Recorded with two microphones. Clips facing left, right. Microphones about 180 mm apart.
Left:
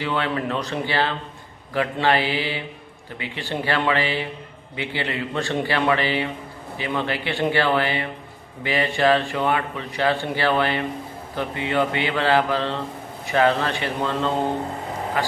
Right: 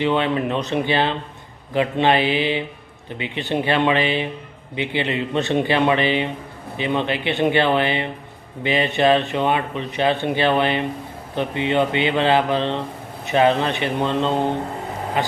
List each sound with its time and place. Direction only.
0.0 s speech: 20° right (ahead or behind)